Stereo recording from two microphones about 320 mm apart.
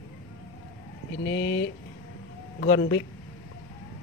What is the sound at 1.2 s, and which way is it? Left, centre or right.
Speech, left.